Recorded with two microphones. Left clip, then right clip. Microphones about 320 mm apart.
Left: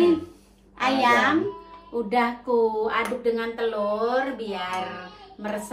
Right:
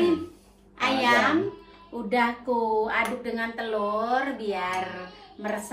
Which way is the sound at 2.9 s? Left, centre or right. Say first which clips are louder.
Left 3 dB; centre.